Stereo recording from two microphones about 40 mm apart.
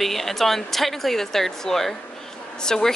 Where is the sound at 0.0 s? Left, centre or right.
Centre.